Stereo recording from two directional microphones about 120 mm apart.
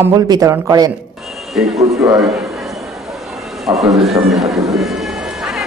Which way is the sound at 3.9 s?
Centre (ahead or behind).